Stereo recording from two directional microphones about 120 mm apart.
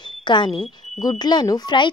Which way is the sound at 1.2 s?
35° left (ahead or behind).